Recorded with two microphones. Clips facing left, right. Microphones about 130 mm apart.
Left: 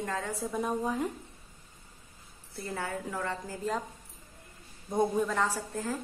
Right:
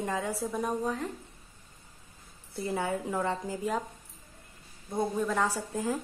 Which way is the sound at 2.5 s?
20° right (ahead or behind).